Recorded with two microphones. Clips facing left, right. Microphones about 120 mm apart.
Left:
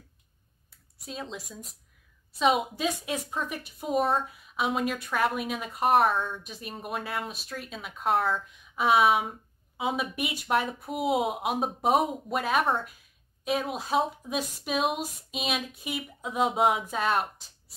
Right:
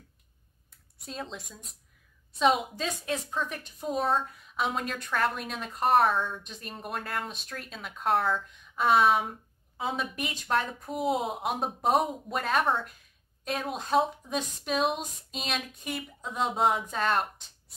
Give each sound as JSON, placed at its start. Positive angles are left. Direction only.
{"t": 0.9, "sound": "speech", "side_deg": 0}
{"t": 2.7, "sound": "speech", "side_deg": 10}